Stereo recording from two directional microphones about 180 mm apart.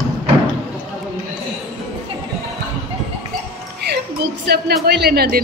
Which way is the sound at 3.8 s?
65° right (ahead or behind).